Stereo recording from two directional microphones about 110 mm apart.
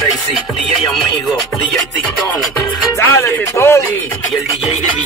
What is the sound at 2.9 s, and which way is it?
Music, 25° left (ahead or behind).